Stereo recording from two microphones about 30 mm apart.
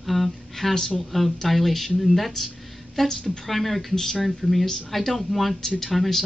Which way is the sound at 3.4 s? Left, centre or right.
Centre.